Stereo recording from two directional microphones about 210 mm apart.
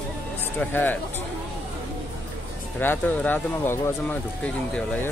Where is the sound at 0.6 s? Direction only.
10° left (ahead or behind).